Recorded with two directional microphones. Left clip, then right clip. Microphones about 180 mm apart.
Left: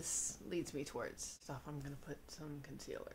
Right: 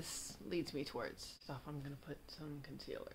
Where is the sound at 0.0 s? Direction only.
10° right (ahead or behind).